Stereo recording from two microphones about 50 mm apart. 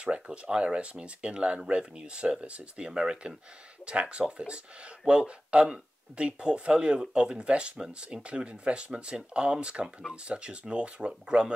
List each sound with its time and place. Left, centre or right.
0.0 s speech: right